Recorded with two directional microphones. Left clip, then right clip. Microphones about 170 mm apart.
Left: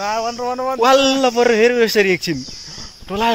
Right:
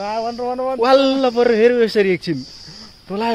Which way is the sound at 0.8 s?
Centre (ahead or behind).